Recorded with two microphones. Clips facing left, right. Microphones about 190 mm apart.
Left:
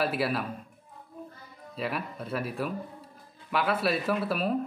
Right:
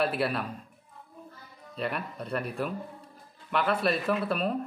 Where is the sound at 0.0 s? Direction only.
Centre (ahead or behind).